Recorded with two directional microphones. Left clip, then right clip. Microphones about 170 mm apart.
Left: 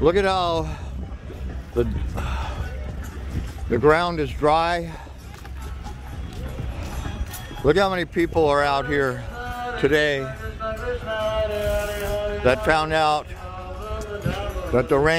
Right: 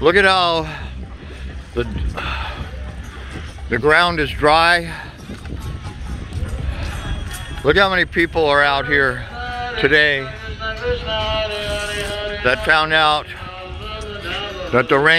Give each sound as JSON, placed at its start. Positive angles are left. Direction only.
{"t": 0.0, "sound": "speech", "side_deg": 0}
{"t": 1.8, "sound": "speech", "side_deg": 5}
{"t": 3.7, "sound": "speech", "side_deg": 0}
{"t": 7.6, "sound": "speech", "side_deg": 5}
{"t": 10.6, "sound": "music", "side_deg": 90}
{"t": 11.7, "sound": "a sound", "side_deg": 55}
{"t": 12.4, "sound": "speech", "side_deg": 5}
{"t": 13.8, "sound": "music", "side_deg": 75}
{"t": 14.7, "sound": "speech", "side_deg": 0}